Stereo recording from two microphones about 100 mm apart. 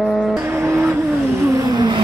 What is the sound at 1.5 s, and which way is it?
Vehicle, 40° right (ahead or behind).